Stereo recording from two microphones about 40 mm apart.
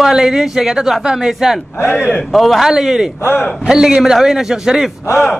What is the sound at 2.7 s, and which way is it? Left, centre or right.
A man's voice, centre.